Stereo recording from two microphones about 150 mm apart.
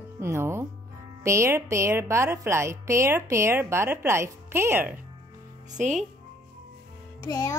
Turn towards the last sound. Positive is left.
turn(degrees=20)  # may be behind; listen again after turning